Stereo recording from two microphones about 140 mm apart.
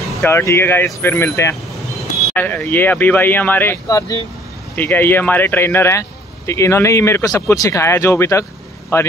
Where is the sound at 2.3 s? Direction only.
10° left (ahead or behind).